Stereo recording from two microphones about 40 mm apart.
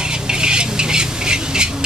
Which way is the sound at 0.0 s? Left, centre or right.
Right.